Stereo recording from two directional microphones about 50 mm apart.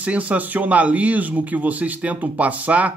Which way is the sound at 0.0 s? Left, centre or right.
Right.